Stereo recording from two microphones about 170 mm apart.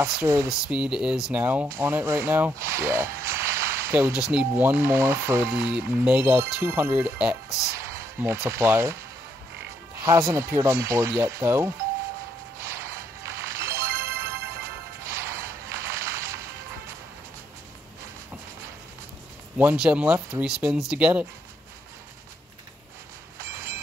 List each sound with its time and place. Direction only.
0.0 s speech: 15° right (ahead or behind)
7.7 s music: 15° right (ahead or behind)
8.5 s speech: 15° right (ahead or behind)
10.3 s speech: 15° right (ahead or behind)
12.5 s music: 15° right (ahead or behind)
19.6 s speech: 10° right (ahead or behind)
23.4 s vehicle: 15° right (ahead or behind)